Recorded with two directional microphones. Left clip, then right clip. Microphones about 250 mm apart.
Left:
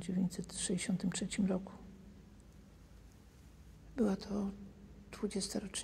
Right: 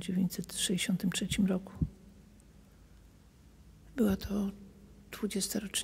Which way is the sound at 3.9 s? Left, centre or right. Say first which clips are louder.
Right 4 dB; right.